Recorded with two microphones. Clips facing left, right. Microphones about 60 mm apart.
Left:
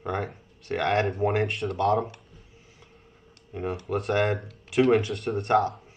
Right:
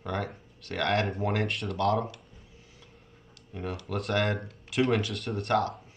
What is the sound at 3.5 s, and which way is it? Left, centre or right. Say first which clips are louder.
Speech: left 5 dB; left.